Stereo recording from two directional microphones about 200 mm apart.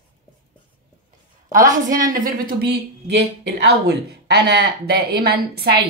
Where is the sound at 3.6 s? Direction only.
55° right (ahead or behind).